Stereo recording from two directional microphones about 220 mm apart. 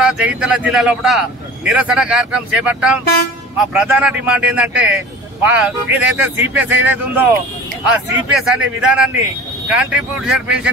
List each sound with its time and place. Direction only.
0.0 s a man's voice: 5° right (ahead or behind)